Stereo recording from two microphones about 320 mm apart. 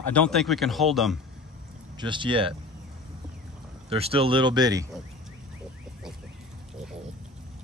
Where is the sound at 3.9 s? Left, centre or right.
Centre.